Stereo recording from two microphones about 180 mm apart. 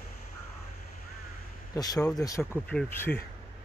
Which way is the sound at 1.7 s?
20° left (ahead or behind).